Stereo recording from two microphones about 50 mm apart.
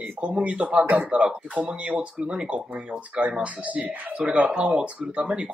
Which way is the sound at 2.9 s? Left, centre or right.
Right.